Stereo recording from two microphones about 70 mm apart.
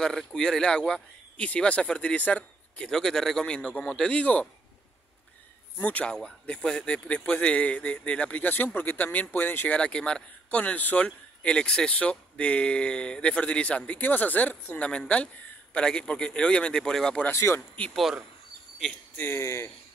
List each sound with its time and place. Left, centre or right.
0.0 s speech: centre
2.8 s speech: centre
5.8 s a man's voice: left
9.8 s speech: centre
17.3 s speech: left
17.6 s speech: centre
19.1 s speech: left
19.4 s speech: left